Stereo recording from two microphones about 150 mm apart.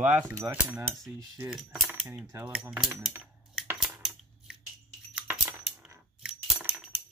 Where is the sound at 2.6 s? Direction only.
10° right (ahead or behind).